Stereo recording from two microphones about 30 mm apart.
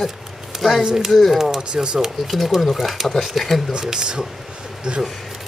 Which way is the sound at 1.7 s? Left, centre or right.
Right.